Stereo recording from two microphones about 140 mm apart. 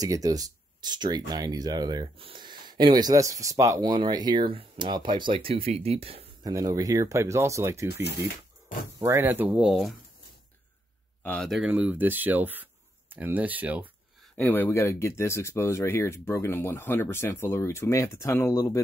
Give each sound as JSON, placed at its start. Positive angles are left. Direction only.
{"t": 0.0, "sound": "speech", "side_deg": -25}
{"t": 6.4, "sound": "speech", "side_deg": -25}
{"t": 9.7, "sound": "speech", "side_deg": 0}
{"t": 11.2, "sound": "speech", "side_deg": 0}
{"t": 14.3, "sound": "speech", "side_deg": 15}